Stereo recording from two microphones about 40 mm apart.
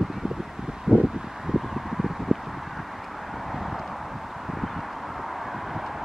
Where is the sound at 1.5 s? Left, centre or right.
Centre.